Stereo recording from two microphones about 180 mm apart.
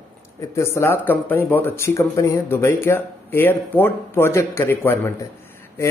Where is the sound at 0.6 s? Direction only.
15° left (ahead or behind).